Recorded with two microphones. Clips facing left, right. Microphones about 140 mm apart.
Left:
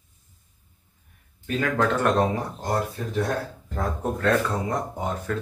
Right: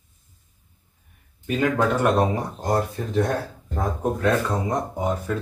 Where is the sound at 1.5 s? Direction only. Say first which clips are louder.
Right 2 dB; 15° right (ahead or behind).